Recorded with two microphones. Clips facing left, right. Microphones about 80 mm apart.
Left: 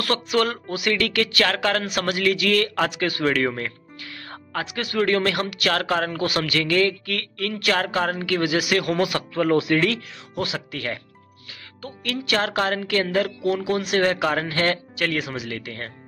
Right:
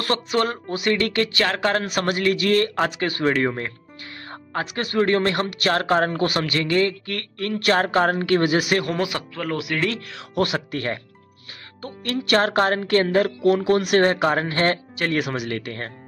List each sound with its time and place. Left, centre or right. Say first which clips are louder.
0.0 s speech: even; right
7.5 s speech: right 4 dB; right
8.9 s speech: left 2 dB; right
9.3 s speech: left 7 dB; centre
10.0 s speech: right 5 dB; right
10.4 s speech: right 5 dB; right
13.7 s speech: right 4 dB; right
14.0 s speech: right 2 dB; right
15.1 s speech: right 4 dB; right